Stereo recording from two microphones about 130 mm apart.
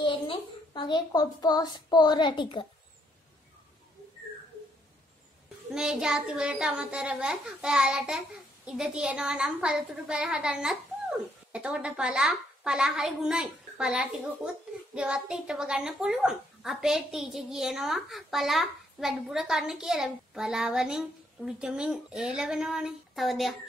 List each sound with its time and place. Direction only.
0.0 s a child's voice: 35° left (ahead or behind)
5.7 s a woman's voice: 5° right (ahead or behind)